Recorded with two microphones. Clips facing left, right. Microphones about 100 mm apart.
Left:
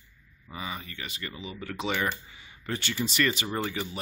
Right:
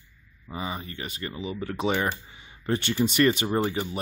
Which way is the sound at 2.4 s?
30° right (ahead or behind).